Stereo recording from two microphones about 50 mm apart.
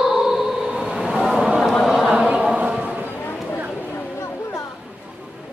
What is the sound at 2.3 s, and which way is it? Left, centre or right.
Chant, right.